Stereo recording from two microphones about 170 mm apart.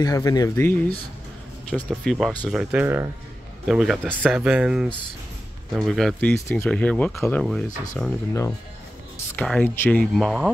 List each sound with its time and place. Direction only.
0.0 s speech: 20° left (ahead or behind)
1.9 s speech: centre (ahead or behind)
8.3 s speech: 15° left (ahead or behind); by 10.5 s centre (ahead or behind)